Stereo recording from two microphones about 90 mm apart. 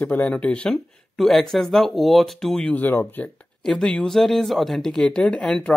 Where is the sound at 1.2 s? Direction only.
Centre (ahead or behind).